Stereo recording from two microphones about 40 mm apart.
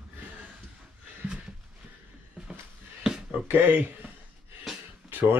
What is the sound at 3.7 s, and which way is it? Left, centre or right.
Speech, right.